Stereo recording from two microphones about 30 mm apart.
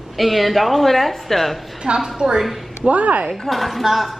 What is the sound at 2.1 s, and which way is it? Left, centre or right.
Speech, right.